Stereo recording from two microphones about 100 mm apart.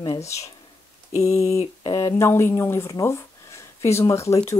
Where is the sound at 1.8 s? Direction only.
45° left (ahead or behind).